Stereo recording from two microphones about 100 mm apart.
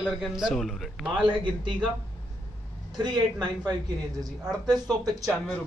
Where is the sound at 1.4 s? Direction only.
50° right (ahead or behind).